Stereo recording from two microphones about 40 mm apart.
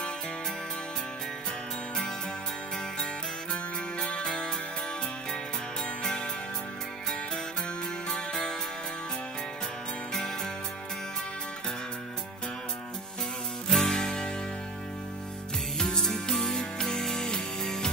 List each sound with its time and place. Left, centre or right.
4.0 s music: left
8.1 s music: centre
10.1 s music: centre
13.7 s music: centre
16.0 s music: centre